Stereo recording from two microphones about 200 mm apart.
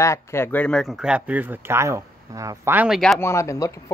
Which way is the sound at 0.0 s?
15° left (ahead or behind).